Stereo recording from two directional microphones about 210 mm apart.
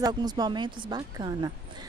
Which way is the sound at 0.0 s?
20° right (ahead or behind).